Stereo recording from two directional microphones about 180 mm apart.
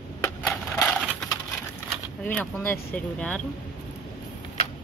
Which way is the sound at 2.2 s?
10° left (ahead or behind).